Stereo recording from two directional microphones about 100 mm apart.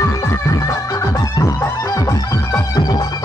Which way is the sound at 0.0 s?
30° left (ahead or behind).